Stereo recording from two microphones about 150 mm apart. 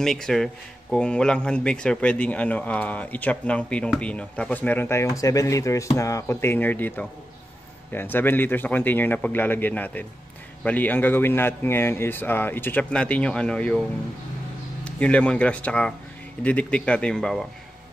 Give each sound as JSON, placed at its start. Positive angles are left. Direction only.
{"t": 0.0, "sound": "speech", "side_deg": 5}
{"t": 14.9, "sound": "speech", "side_deg": 10}